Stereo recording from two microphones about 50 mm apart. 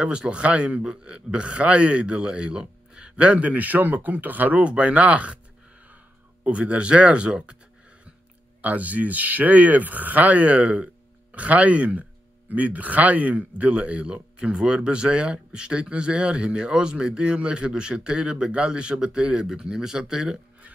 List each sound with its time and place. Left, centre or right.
0.0 s speech: right
6.4 s speech: right
8.6 s speech: right; by 20.3 s centre